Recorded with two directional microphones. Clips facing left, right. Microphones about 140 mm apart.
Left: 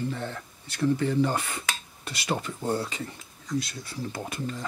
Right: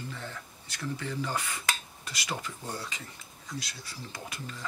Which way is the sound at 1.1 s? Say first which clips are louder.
Left 8 dB; 55° left (ahead or behind).